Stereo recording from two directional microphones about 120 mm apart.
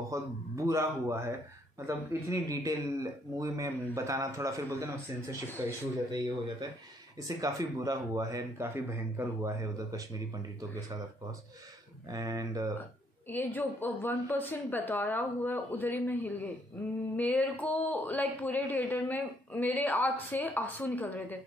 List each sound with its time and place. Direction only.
0.1 s speech: 25° right (ahead or behind)
6.6 s speech: 35° right (ahead or behind)
12.1 s speech: 30° right (ahead or behind)
13.3 s speech: 15° left (ahead or behind)